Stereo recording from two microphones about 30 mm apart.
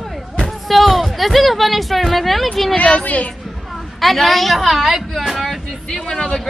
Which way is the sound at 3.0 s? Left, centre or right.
Left.